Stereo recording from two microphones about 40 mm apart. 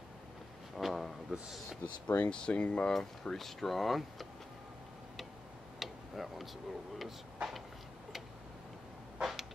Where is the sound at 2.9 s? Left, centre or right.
Centre.